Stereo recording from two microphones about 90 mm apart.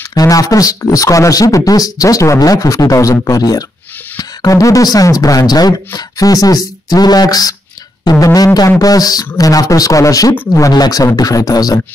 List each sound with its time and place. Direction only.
0.1 s speech: 40° left (ahead or behind)